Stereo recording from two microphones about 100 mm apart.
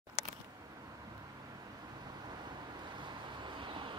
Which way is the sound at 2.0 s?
45° right (ahead or behind).